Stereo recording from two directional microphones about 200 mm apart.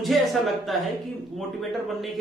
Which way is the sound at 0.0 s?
Centre (ahead or behind).